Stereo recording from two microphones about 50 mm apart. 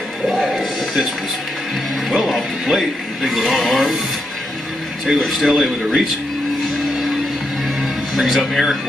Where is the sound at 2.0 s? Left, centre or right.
Centre.